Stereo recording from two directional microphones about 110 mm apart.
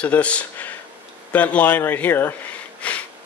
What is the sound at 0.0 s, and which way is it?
Speech, 10° left (ahead or behind).